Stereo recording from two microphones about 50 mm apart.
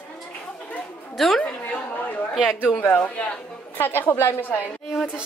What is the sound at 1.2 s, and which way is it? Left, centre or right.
Speech, centre.